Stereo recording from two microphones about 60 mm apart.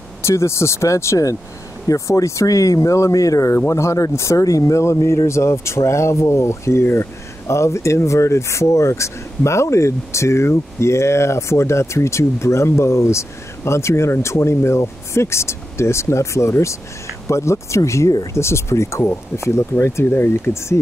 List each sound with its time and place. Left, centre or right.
0.2 s speech: left
3.5 s speech: left
20.1 s speech: left